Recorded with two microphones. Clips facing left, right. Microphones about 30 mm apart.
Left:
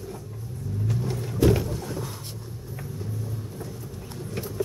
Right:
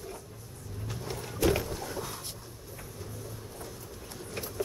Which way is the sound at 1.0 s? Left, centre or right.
Centre.